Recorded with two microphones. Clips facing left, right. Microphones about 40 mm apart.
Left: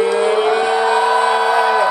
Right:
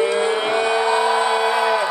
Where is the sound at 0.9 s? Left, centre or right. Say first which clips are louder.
Left 3 dB; left.